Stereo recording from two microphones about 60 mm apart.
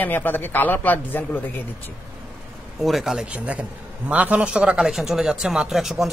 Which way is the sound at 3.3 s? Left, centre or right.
Right.